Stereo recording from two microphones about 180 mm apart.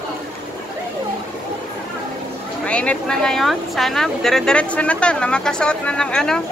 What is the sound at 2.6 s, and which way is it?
Speech, 5° left (ahead or behind).